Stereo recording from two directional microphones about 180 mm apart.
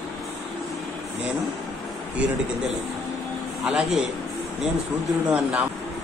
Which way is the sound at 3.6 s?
5° right (ahead or behind).